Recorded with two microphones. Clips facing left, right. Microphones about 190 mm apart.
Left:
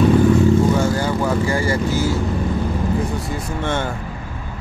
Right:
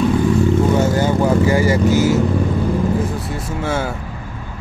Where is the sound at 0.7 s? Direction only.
20° right (ahead or behind).